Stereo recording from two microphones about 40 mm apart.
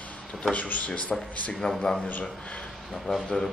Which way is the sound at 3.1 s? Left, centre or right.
Centre.